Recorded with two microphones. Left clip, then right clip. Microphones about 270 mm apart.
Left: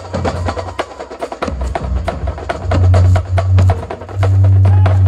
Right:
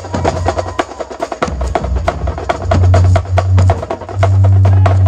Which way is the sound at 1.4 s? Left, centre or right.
Right.